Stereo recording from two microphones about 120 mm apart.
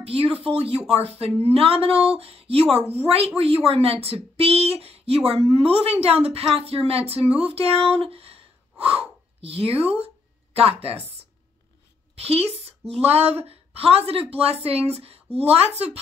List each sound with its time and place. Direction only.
0.0 s speech: 55° right (ahead or behind)